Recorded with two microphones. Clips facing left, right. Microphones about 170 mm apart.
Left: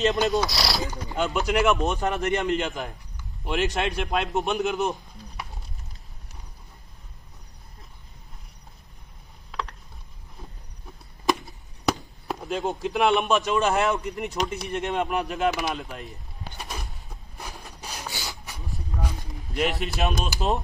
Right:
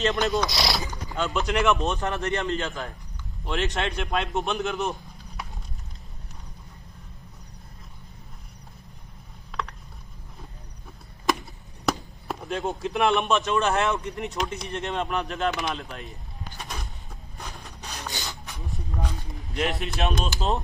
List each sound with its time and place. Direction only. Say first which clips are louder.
0.0 s a man's voice: left 2 dB; centre (ahead or behind)
1.1 s speech: left 1 dB; 15° left (ahead or behind)
1.4 s a man's voice: left 1 dB; 5° left (ahead or behind)
1.8 s a man's voice: left 2 dB; 15° left (ahead or behind)
3.4 s a man's voice: left 2 dB; 5° left (ahead or behind)
9.5 s mechanisms: even; centre (ahead or behind)
11.2 s speech: left 1 dB; centre (ahead or behind)
15.0 s a sound: left 2 dB; 5° left (ahead or behind)
19.0 s speech: even; centre (ahead or behind)